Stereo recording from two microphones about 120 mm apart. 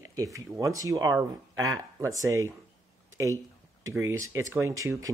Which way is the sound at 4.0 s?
25° right (ahead or behind).